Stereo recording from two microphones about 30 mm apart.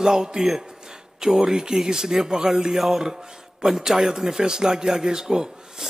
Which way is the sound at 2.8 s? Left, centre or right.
Centre.